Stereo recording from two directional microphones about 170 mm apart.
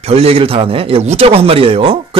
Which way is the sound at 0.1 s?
35° right (ahead or behind).